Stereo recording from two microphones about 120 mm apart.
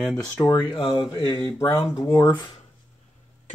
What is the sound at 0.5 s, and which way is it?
Speech, 40° left (ahead or behind).